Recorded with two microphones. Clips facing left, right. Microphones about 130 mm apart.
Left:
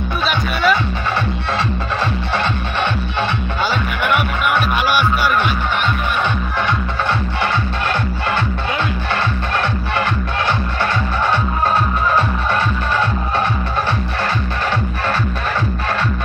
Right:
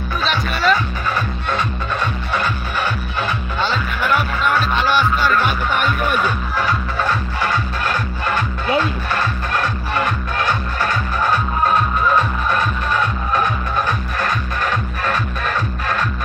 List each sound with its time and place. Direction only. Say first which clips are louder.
0.3 s music: left 1 dB; centre (ahead or behind)
4.0 s music: even; 65° left (ahead or behind)